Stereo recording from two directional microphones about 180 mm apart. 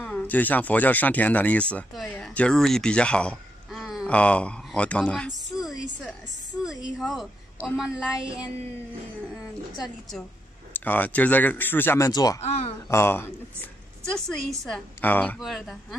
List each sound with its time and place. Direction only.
0.0 s a woman's voice: 10° left (ahead or behind)
10.7 s speech: 10° left (ahead or behind)
12.4 s speech: 35° left (ahead or behind)
12.9 s speech: 15° left (ahead or behind)
14.6 s a woman's voice: 5° left (ahead or behind)